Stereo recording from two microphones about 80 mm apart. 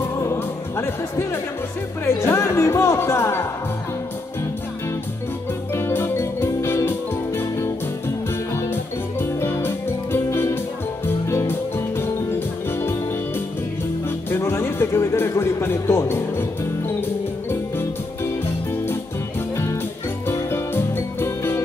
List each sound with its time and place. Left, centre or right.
0.2 s music: left
2.0 s speech: left
5.8 s music: left
9.2 s music: left
14.3 s a sound: left
19.5 s music: left